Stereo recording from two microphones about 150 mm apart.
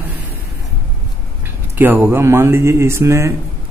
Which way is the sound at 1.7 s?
10° right (ahead or behind).